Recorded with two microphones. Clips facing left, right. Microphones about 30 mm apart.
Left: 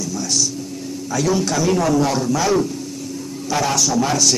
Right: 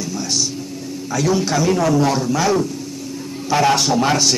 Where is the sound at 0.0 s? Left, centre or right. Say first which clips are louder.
Even; right.